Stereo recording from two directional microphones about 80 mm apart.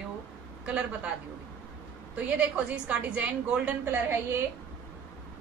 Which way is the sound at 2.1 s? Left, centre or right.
Centre.